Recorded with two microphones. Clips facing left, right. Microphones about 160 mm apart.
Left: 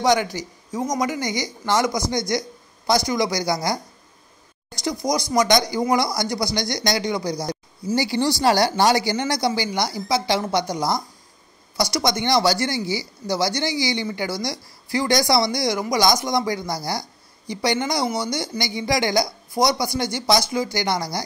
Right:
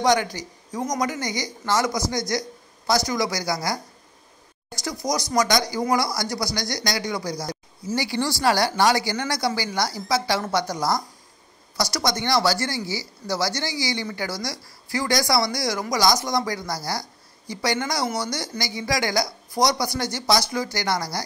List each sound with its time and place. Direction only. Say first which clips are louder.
0.0 s speech: left 1 dB; 10° left (ahead or behind)
2.0 s speech: left 2 dB; 20° left (ahead or behind)
5.0 s speech: left 2 dB; 10° left (ahead or behind)
5.5 s speech: left 3 dB; 20° left (ahead or behind)
19.6 s speech: left 2 dB; 5° left (ahead or behind)